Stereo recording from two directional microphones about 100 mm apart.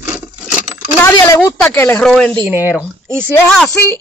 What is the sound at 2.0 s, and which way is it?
Speech, 5° left (ahead or behind).